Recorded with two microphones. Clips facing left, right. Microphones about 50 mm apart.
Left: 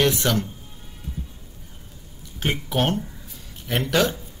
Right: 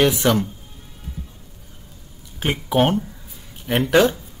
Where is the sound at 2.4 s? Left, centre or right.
Centre.